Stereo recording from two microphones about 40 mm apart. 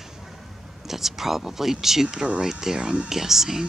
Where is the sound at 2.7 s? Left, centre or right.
Right.